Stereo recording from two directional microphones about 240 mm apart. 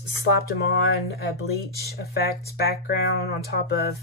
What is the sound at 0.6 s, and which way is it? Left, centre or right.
Speech, left.